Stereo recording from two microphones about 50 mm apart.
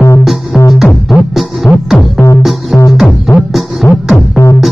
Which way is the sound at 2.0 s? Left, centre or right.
Left.